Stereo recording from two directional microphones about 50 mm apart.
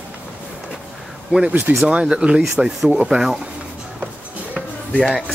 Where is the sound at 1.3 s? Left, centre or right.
Right.